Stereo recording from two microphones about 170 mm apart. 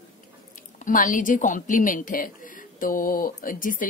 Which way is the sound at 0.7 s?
50° left (ahead or behind).